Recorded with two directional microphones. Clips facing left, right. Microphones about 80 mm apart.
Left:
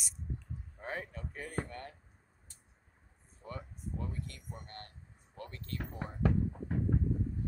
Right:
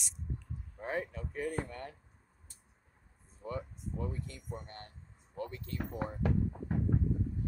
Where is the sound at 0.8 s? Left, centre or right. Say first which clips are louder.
Right 4 dB; centre.